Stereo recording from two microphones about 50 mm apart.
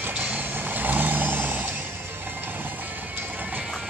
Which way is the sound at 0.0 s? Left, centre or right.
Right.